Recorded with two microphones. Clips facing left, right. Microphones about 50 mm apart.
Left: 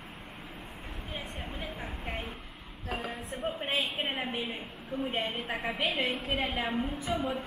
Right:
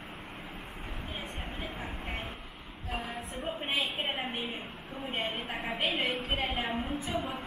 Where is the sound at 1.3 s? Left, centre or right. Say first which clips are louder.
Even; centre.